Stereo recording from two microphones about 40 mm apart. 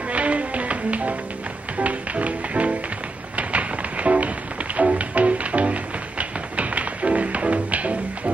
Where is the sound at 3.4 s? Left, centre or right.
Right.